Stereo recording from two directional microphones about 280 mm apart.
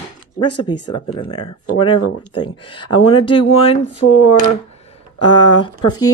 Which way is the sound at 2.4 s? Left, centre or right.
Centre.